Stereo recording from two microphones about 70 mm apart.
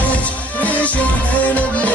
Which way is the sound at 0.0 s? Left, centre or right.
Left.